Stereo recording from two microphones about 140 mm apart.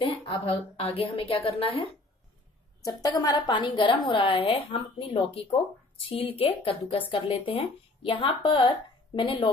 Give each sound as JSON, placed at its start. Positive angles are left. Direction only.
{"t": 0.2, "sound": "a woman's voice", "side_deg": 45}
{"t": 2.8, "sound": "a woman's voice", "side_deg": 25}